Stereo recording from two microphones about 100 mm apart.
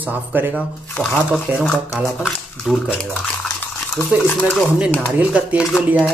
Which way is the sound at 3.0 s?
5° left (ahead or behind).